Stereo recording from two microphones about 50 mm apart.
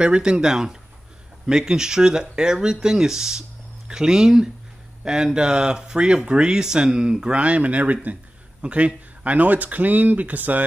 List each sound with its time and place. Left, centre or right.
0.0 s speech: centre; by 10.6 s right